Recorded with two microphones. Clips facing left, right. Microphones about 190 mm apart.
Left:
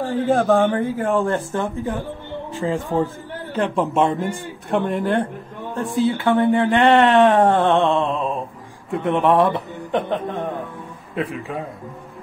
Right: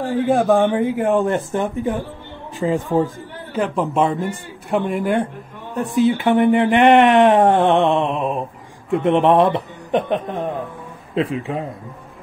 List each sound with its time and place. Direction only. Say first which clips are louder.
0.3 s speech: right 1 dB; 15° right (ahead or behind)
3.5 s a man's voice: even; centre (ahead or behind); by 11.6 s 25° right (ahead or behind)